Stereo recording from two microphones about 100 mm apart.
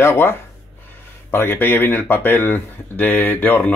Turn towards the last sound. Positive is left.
turn(degrees=15)  # may be behind; listen again after turning